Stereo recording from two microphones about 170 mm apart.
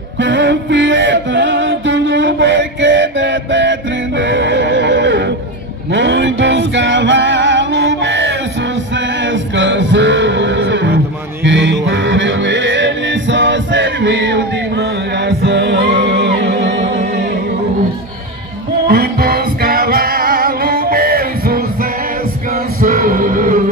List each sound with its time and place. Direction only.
0.2 s music: 90° right
4.2 s neigh: 90° right
5.9 s male singing: 90° right
8.9 s music: 90° right; by 17.1 s 65° right (ahead or behind)
18.9 s music: 65° right (ahead or behind)
22.8 s music: 55° right (ahead or behind)